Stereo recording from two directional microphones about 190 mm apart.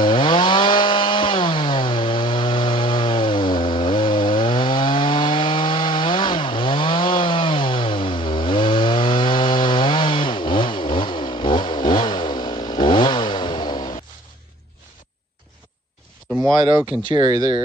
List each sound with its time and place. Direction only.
0.0 s chainsaw: 25° left (ahead or behind)
17.1 s speech: 25° right (ahead or behind)